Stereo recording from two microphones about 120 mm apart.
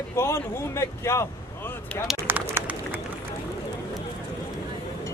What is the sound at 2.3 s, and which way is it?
Run, 15° right (ahead or behind).